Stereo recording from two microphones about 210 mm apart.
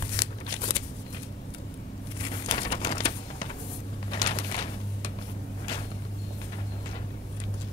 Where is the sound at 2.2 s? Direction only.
20° left (ahead or behind).